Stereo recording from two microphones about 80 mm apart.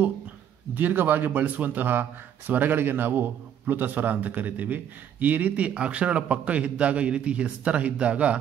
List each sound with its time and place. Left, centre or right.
0.7 s a man's voice: right